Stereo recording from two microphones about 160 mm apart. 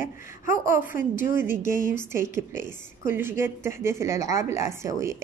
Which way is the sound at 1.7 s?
15° right (ahead or behind).